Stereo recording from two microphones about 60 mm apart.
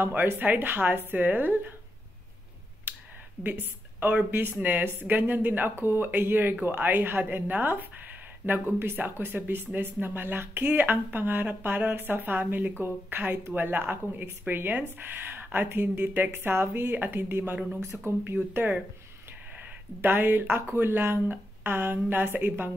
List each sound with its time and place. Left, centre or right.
0.0 s speech: right
3.4 s a woman's voice: right
4.6 s speech: right
20.0 s speech: right